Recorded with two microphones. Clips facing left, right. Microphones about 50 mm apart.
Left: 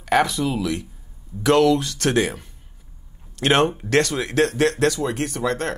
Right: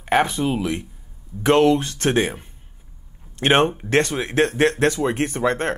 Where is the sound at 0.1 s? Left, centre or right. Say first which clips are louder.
Even; right.